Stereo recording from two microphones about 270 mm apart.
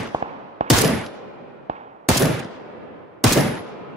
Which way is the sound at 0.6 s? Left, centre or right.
Right.